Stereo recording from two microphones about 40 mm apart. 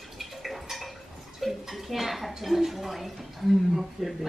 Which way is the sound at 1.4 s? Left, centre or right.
Centre.